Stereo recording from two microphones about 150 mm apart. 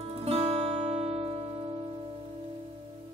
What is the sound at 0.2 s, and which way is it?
Music, 40° right (ahead or behind).